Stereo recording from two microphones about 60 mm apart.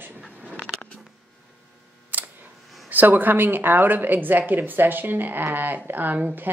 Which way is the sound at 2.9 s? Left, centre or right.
Right.